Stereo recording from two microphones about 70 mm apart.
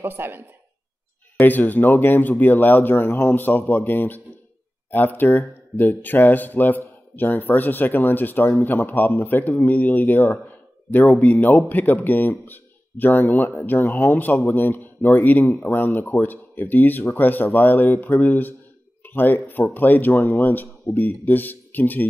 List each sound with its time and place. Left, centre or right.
0.0 s speech: right
1.4 s a man's voice: left